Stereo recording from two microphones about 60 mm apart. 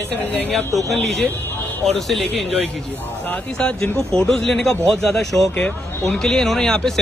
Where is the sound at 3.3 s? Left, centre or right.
Left.